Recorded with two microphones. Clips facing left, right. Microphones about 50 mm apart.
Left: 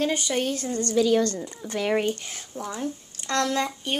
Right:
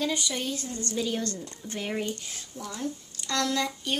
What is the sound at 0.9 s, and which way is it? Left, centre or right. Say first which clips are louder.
A woman's voice: left 10 dB; left.